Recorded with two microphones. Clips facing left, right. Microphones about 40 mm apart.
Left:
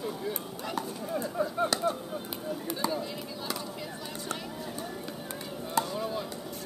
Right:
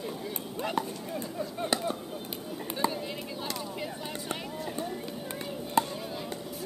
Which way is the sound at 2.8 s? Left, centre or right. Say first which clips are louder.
Right 1 dB; right.